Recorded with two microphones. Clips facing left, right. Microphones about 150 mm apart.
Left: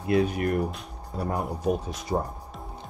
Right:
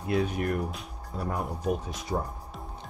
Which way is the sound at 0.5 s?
Centre (ahead or behind).